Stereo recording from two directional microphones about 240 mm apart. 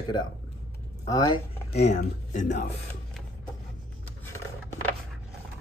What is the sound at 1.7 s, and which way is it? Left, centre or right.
Speech, left.